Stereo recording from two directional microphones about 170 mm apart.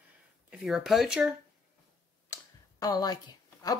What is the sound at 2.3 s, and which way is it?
Tick, 15° left (ahead or behind).